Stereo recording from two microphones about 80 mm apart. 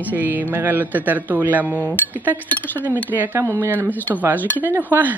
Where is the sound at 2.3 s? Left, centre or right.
Left.